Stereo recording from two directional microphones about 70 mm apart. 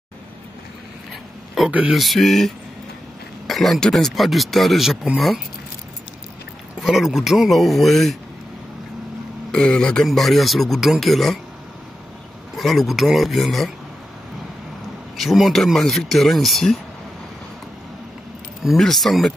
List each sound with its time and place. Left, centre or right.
1.7 s speech: centre
2.0 s a man's voice: centre
6.8 s a man's voice: centre
9.5 s a man's voice: centre
12.5 s a man's voice: centre
15.1 s a man's voice: centre
18.8 s a man's voice: centre